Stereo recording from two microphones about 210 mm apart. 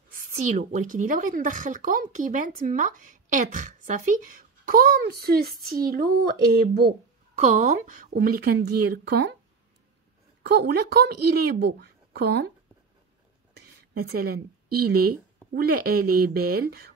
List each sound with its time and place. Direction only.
0.1 s a sound: 45° right (ahead or behind)
0.7 s speech: 40° right (ahead or behind)
6.9 s a woman's voice: 35° right (ahead or behind); by 9.3 s 50° right (ahead or behind)
10.4 s a woman's voice: 50° right (ahead or behind)
13.6 s a woman's voice: 45° right (ahead or behind)